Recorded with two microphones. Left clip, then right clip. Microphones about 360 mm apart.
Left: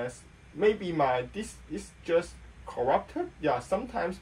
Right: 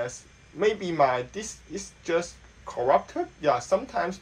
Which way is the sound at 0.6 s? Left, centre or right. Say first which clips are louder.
Right 3 dB; centre.